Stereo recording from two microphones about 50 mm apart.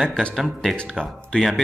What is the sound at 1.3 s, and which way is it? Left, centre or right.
Speech, left.